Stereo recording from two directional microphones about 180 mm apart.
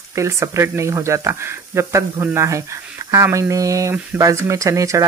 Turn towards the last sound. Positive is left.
turn(degrees=-15)  # may be behind; listen again after turning